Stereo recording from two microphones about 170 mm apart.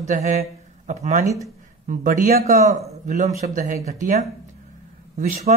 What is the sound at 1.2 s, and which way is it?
Speech, 20° right (ahead or behind).